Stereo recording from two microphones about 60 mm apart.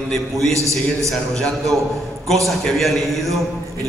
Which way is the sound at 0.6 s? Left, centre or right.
Right.